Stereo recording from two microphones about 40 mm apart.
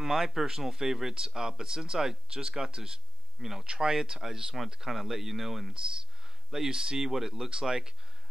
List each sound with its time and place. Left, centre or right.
0.0 s speech: centre
5.7 s speech: centre